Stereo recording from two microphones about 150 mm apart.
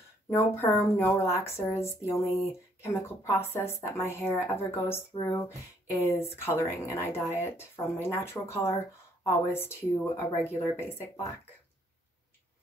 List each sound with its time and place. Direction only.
0.3 s speech: 15° left (ahead or behind)